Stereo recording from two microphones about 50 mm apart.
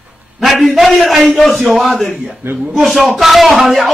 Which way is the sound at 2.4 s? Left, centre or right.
Right.